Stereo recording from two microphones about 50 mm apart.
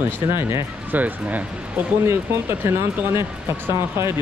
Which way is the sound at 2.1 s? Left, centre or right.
Right.